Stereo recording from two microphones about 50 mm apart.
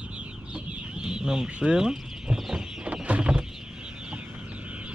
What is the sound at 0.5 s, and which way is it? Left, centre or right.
Chicken, centre.